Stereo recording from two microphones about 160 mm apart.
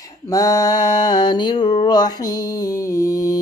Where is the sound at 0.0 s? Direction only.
20° left (ahead or behind).